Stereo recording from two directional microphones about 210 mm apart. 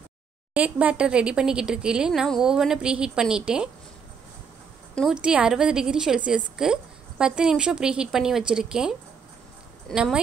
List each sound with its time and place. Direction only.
0.6 s a woman's voice: 5° right (ahead or behind)
4.9 s a woman's voice: centre (ahead or behind)